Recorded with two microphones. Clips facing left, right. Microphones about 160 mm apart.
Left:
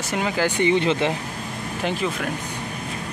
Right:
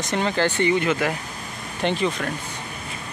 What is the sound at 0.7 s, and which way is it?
Speech, 25° left (ahead or behind).